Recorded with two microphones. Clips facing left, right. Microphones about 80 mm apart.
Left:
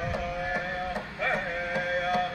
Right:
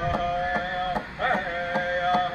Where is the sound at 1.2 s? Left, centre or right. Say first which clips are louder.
Right 3 dB; right.